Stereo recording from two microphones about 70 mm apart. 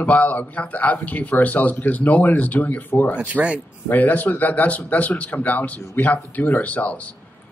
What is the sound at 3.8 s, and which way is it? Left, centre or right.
Speech, left.